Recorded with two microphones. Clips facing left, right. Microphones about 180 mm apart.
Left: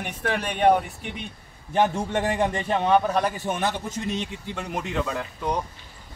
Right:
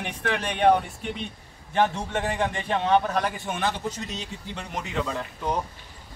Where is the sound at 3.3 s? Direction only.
40° left (ahead or behind).